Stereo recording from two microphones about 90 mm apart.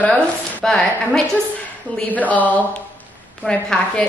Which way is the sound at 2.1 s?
15° left (ahead or behind).